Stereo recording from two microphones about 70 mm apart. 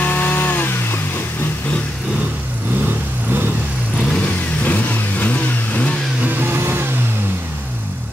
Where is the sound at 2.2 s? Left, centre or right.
Right.